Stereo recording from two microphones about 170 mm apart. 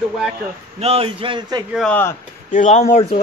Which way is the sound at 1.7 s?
5° left (ahead or behind).